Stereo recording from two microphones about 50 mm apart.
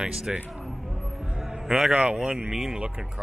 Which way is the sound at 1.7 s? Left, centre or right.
Centre.